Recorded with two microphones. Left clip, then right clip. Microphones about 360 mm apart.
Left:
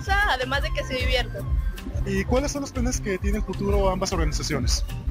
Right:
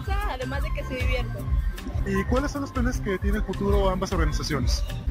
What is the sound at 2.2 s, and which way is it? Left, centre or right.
Speech, centre.